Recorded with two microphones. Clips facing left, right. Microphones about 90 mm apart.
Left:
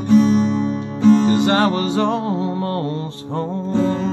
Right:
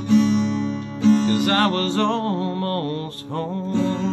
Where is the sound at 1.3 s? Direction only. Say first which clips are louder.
Left 3 dB; 20° left (ahead or behind).